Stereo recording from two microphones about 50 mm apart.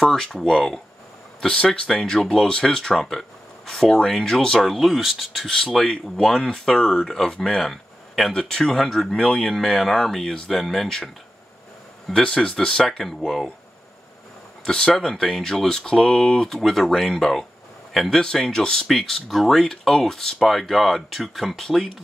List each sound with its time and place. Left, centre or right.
0.0 s speech: centre
1.4 s speech: centre
1.9 s speech: centre
7.6 s a sound: centre
8.3 s speech: centre
12.1 s speech: centre
14.6 s speech: centre